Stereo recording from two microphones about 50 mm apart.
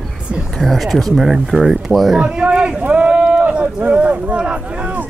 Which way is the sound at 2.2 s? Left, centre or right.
Right.